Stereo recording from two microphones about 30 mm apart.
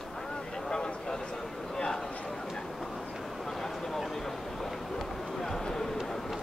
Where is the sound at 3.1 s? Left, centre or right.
Centre.